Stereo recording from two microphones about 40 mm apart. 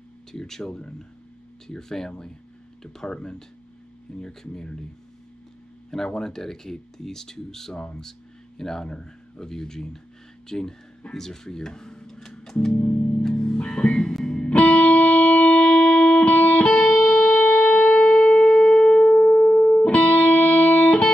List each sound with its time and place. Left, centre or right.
0.3 s speech: centre
5.9 s speech: centre
7.7 s speech: left
12.7 s music: left
19.0 s music: left
20.0 s music: centre